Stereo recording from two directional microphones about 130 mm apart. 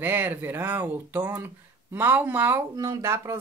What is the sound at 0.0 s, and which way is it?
A woman's voice, 15° right (ahead or behind).